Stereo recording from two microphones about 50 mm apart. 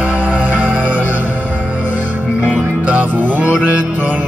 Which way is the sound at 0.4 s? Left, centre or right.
Right.